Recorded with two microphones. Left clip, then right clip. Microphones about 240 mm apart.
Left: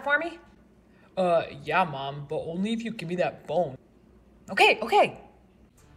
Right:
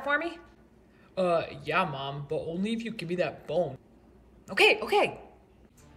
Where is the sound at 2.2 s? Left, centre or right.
Right.